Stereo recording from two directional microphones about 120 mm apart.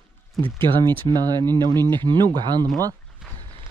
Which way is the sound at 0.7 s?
65° left (ahead or behind).